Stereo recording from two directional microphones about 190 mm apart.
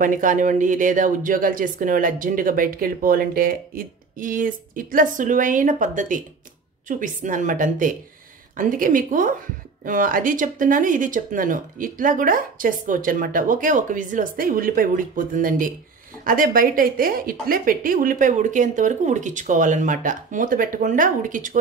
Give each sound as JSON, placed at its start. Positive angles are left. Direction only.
{"t": 0.0, "sound": "speech", "side_deg": -45}